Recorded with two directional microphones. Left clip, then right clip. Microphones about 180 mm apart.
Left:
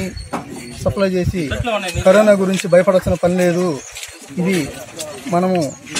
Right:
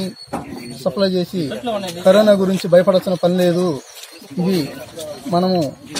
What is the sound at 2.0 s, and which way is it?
Speech, 10° left (ahead or behind).